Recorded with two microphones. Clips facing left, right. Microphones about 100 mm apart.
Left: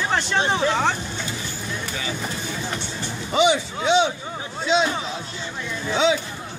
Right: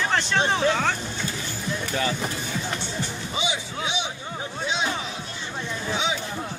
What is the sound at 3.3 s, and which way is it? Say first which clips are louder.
Speech: left 11 dB; 80° left.